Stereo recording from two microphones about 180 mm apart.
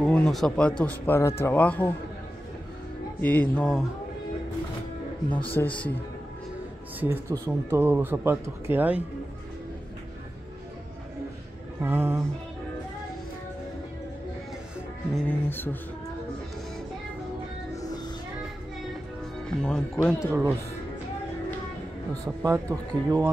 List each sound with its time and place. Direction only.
0.0 s speech: 5° left (ahead or behind)
3.2 s speech: 10° left (ahead or behind)
5.3 s speech: 10° left (ahead or behind)
7.0 s speech: 10° right (ahead or behind)
11.8 s speech: 10° right (ahead or behind)
15.2 s speech: 10° left (ahead or behind)
17.7 s music: 20° left (ahead or behind)
19.6 s speech: 5° left (ahead or behind)
20.2 s speech: 10° right (ahead or behind)
22.2 s speech: 15° right (ahead or behind)